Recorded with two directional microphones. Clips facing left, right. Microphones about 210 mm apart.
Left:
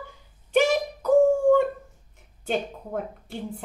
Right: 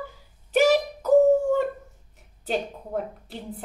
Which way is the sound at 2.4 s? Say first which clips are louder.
Even; centre (ahead or behind).